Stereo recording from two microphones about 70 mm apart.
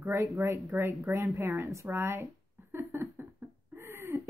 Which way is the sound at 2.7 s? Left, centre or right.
Right.